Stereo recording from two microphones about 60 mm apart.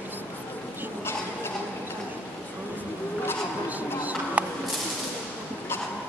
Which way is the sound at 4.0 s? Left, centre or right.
Right.